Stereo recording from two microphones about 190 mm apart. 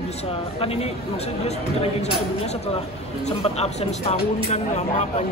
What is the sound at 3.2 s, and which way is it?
Speech, 35° left (ahead or behind).